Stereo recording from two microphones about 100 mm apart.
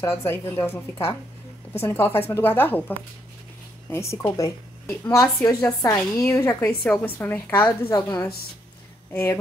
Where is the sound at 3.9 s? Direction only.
30° left (ahead or behind).